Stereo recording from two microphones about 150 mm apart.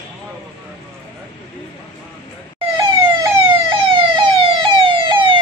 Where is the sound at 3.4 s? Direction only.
35° right (ahead or behind).